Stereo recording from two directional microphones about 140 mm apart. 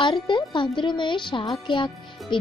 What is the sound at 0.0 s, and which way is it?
Speech, 35° left (ahead or behind).